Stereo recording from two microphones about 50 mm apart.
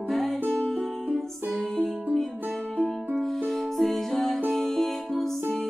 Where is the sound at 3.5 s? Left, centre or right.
Centre.